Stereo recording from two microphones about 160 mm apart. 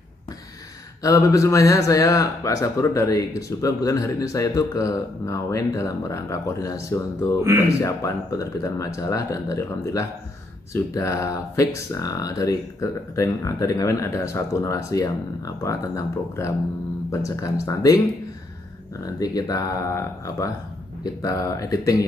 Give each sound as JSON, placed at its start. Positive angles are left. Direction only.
{"t": 1.0, "sound": "speech", "side_deg": 20}
{"t": 19.0, "sound": "speech", "side_deg": 25}